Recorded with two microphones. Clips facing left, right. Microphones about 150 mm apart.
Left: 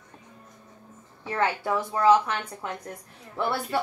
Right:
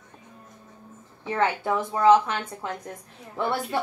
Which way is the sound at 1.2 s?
25° right (ahead or behind).